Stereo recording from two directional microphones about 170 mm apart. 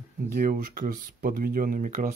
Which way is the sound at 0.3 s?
55° right (ahead or behind).